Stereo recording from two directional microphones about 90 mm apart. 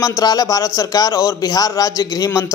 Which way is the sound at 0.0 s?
45° left (ahead or behind).